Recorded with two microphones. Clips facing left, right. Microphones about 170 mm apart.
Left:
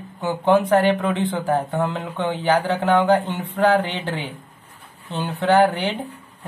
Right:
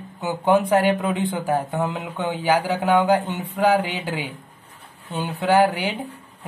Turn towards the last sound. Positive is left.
turn(degrees=-5)  # may be behind; listen again after turning